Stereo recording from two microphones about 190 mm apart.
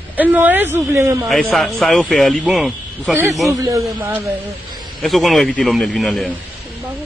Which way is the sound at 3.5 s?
20° right (ahead or behind).